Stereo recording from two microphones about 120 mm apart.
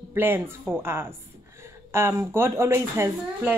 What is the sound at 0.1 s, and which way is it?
A woman's voice, 20° right (ahead or behind).